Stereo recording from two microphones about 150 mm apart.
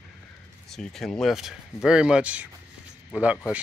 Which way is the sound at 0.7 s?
5° left (ahead or behind).